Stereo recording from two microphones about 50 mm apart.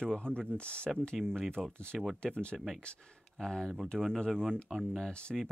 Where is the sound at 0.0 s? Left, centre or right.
Centre.